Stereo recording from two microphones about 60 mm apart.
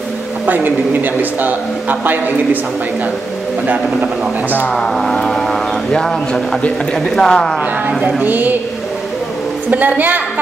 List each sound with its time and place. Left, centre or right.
0.5 s a woman's voice: right
3.6 s a woman's voice: right
4.6 s speech: centre
8.2 s a woman's voice: right
9.7 s a woman's voice: right